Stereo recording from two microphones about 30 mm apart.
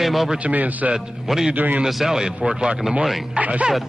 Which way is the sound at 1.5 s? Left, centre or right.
Right.